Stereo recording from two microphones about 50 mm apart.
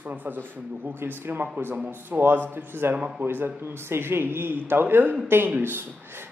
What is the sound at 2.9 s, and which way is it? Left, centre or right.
Speech, right.